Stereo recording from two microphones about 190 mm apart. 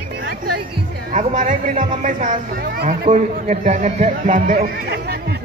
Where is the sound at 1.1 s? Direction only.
40° right (ahead or behind).